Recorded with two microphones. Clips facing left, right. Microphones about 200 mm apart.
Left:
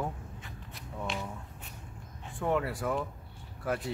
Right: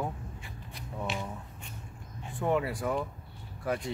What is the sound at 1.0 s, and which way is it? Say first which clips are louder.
Speech: right 1 dB; 5° right (ahead or behind).